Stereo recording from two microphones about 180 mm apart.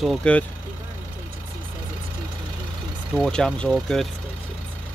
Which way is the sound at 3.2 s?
Centre (ahead or behind).